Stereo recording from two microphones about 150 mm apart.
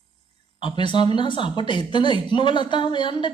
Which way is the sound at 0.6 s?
30° left (ahead or behind).